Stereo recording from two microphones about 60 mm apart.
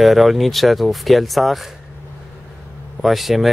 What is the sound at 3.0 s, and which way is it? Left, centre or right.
Speech, centre.